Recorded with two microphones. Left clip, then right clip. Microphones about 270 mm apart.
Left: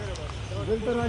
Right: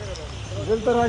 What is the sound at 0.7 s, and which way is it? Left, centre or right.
Speech, right.